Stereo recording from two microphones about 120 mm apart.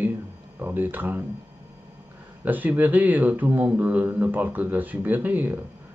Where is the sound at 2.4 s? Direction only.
15° right (ahead or behind).